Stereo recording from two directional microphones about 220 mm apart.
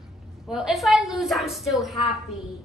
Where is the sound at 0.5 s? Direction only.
Centre (ahead or behind).